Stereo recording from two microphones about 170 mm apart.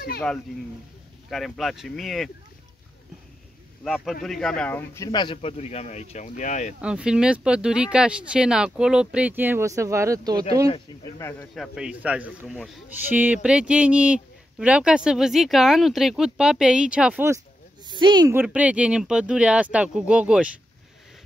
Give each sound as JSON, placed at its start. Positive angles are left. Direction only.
{"t": 1.3, "sound": "speech", "side_deg": 0}
{"t": 3.8, "sound": "speech", "side_deg": 0}
{"t": 6.8, "sound": "speech", "side_deg": -5}
{"t": 11.1, "sound": "speech", "side_deg": 15}
{"t": 11.5, "sound": "speech", "side_deg": 0}
{"t": 17.8, "sound": "speech", "side_deg": -25}
{"t": 18.3, "sound": "speech", "side_deg": -10}